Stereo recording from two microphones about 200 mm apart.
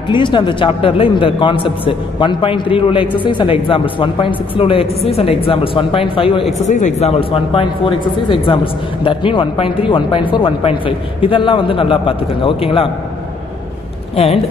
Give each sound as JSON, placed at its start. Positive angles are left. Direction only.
{"t": 0.1, "sound": "speech", "side_deg": 25}
{"t": 14.1, "sound": "speech", "side_deg": 30}